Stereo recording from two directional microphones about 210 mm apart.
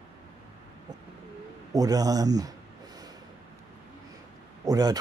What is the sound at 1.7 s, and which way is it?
Speech, 15° right (ahead or behind).